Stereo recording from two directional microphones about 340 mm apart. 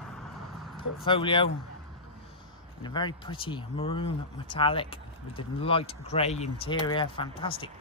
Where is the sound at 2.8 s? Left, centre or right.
Centre.